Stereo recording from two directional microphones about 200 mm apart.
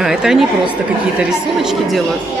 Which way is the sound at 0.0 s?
Centre (ahead or behind).